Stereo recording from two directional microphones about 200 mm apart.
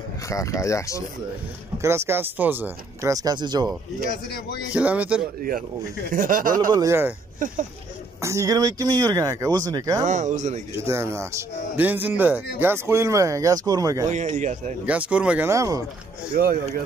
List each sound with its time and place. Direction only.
0.3 s speech: 15° left (ahead or behind)
1.8 s speech: 15° right (ahead or behind)
4.7 s speech: 5° right (ahead or behind)
6.1 s speech: 45° right (ahead or behind)
6.7 s speech: 15° right (ahead or behind)
7.3 s speech: 40° right (ahead or behind)
8.2 s speech: 15° right (ahead or behind)
10.0 s speech: 35° right (ahead or behind)
10.8 s speech: 15° right (ahead or behind)
14.0 s speech: 35° right (ahead or behind)
14.9 s speech: 5° right (ahead or behind)
16.3 s speech: 50° right (ahead or behind)